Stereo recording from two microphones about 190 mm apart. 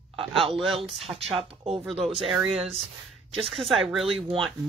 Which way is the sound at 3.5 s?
Centre (ahead or behind).